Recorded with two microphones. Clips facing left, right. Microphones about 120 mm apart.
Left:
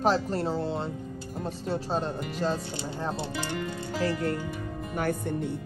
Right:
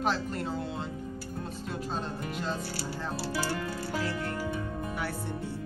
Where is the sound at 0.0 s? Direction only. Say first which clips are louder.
Left 5 dB; 35° left (ahead or behind).